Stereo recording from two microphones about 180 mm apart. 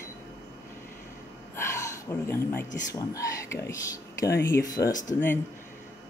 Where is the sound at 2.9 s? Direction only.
15° left (ahead or behind).